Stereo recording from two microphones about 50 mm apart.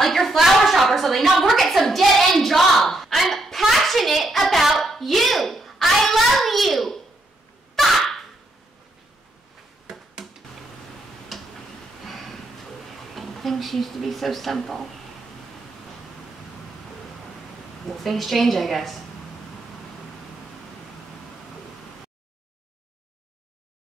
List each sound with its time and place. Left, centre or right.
0.0 s a sound: centre
7.7 s dog: centre
11.3 s tick-tock: centre
12.0 s a sound: centre
13.1 s speech: centre
17.8 s a woman's voice: centre